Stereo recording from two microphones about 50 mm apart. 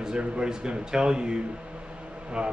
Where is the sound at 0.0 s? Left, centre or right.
Centre.